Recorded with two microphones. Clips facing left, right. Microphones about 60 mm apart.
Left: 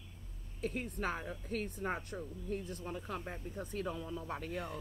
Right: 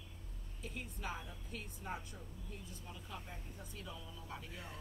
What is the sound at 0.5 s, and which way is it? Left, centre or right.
Speech, left.